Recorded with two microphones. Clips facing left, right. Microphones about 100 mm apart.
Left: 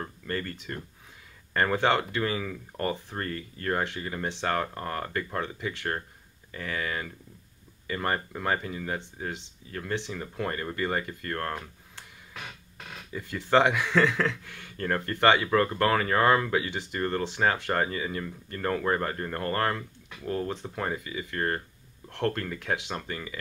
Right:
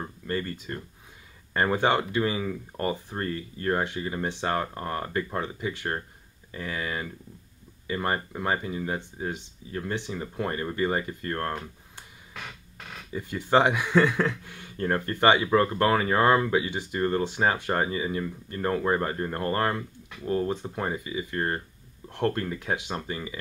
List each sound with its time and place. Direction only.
0.0 s speech: 10° right (ahead or behind)
13.1 s speech: 20° right (ahead or behind)